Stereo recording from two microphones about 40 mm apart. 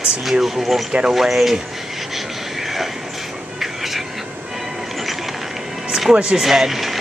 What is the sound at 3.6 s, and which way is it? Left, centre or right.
Whispering, centre.